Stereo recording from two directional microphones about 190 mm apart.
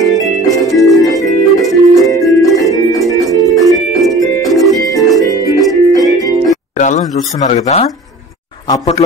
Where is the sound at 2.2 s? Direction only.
Centre (ahead or behind).